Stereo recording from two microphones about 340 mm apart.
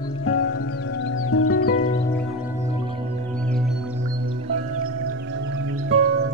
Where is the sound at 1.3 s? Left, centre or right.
Left.